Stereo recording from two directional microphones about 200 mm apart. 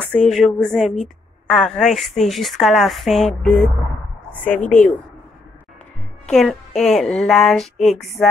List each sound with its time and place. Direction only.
0.1 s a woman's voice: 5° left (ahead or behind)
4.6 s speech: 40° left (ahead or behind)
6.3 s a woman's voice: centre (ahead or behind)